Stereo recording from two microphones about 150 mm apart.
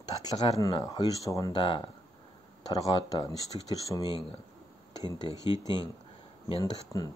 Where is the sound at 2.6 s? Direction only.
25° left (ahead or behind).